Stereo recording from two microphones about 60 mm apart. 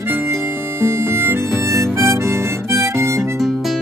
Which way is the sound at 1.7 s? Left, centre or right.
Right.